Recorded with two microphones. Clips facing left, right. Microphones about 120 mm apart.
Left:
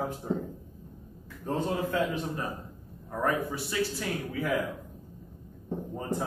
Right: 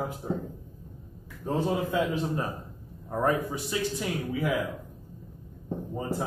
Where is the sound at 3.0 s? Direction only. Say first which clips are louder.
Right 2 dB; 25° right (ahead or behind).